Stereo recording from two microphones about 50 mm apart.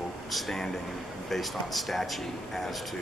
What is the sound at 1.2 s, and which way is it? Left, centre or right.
A man's voice, centre.